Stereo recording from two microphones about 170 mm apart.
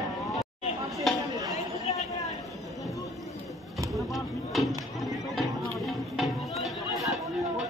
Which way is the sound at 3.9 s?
Centre (ahead or behind).